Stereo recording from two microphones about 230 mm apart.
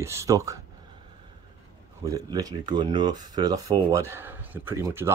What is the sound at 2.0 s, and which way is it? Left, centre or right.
Speech, centre.